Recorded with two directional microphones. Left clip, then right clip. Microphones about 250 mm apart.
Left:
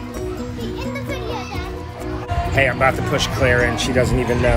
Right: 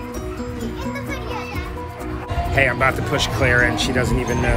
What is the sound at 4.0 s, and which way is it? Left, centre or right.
Speech, centre.